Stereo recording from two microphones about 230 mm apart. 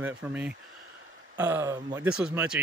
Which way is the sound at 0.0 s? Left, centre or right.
Centre.